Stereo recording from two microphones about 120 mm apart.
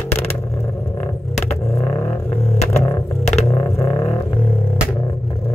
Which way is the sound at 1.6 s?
25° left (ahead or behind).